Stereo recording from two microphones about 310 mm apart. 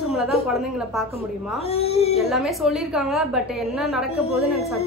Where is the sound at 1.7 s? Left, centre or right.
Centre.